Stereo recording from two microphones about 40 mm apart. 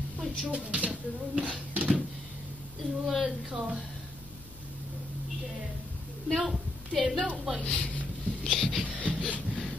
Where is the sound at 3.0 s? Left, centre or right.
Centre.